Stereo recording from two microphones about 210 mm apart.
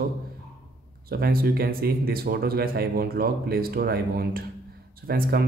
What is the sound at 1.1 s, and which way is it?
A man's voice, 45° right (ahead or behind).